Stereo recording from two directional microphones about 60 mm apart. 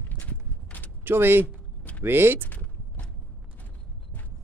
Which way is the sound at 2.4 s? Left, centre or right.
Left.